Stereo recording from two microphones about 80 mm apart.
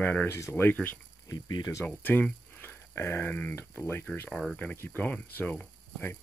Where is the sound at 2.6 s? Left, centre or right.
Left.